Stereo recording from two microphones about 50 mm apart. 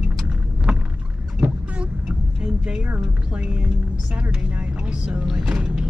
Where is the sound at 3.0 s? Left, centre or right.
Centre.